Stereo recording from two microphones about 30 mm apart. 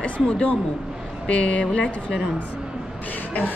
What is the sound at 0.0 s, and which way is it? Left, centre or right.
A woman's voice, left.